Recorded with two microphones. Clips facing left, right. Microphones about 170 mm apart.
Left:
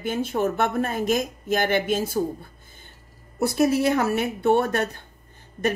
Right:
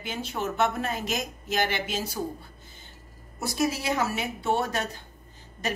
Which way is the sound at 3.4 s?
60° left (ahead or behind).